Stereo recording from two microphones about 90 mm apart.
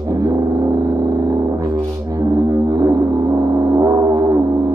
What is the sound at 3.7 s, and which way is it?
Gong, 40° right (ahead or behind).